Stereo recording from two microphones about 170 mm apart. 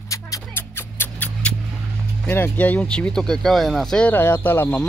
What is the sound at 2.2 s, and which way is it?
Speech, 10° left (ahead or behind).